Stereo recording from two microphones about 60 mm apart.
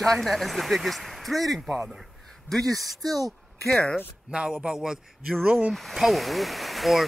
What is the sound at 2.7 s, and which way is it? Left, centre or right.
Speech, centre.